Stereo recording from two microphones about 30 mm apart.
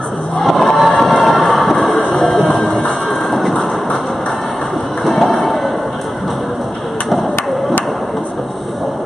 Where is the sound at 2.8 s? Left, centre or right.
Left.